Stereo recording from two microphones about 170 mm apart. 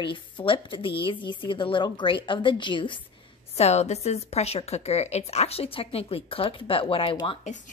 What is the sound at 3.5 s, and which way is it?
A woman's voice, 40° left (ahead or behind).